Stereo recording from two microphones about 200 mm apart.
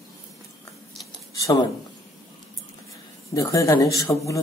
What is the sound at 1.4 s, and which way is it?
Speech, 20° left (ahead or behind).